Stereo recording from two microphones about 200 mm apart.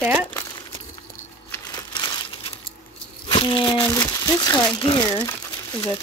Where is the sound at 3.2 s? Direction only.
25° left (ahead or behind).